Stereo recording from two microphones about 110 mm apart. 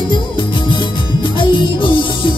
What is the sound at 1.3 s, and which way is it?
Music, 50° left (ahead or behind).